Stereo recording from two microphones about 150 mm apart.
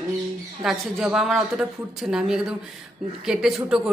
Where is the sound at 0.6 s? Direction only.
5° right (ahead or behind).